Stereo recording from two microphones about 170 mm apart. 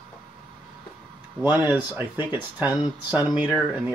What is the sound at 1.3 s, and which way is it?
Speech, 10° right (ahead or behind).